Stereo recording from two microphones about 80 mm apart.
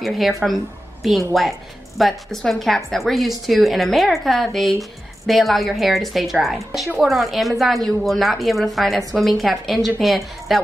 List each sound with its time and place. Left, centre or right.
0.0 s a woman's voice: centre